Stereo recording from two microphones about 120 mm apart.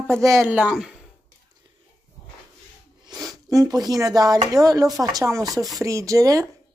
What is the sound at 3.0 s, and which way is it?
Speech, 30° right (ahead or behind).